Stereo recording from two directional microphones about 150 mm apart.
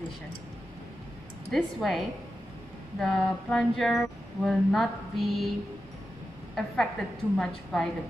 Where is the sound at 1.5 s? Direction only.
Centre (ahead or behind).